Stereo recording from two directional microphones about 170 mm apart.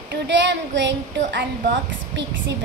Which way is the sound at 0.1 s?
90° right.